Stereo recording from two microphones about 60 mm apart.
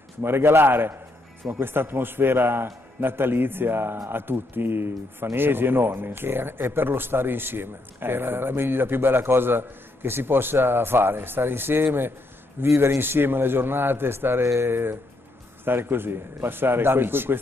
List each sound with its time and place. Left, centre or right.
0.2 s speech: right
12.6 s speech: right